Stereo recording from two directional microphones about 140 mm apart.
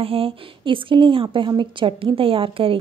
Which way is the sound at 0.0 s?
40° right (ahead or behind).